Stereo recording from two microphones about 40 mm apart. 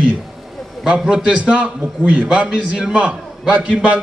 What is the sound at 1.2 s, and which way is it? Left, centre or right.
A man's voice, right.